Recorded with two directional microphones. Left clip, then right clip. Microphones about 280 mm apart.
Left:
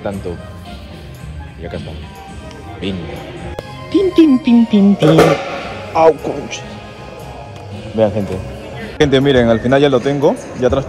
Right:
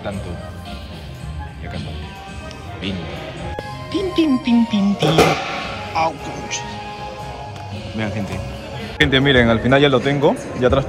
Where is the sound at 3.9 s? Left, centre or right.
Centre.